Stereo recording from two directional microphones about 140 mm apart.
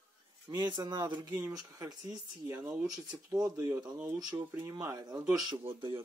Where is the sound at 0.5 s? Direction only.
25° right (ahead or behind).